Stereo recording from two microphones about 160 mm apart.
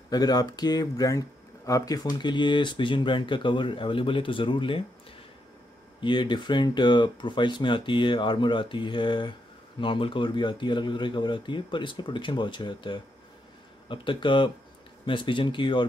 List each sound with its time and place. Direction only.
0.1 s speech: 25° left (ahead or behind)
5.9 s speech: 30° left (ahead or behind)